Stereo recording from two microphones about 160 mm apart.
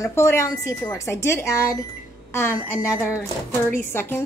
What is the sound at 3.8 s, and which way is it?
Speech, 15° left (ahead or behind).